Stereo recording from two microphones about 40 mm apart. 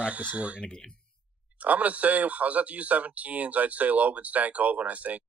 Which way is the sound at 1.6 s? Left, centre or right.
Right.